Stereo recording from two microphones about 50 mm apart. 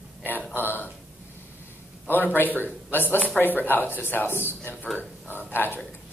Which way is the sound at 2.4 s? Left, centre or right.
Left.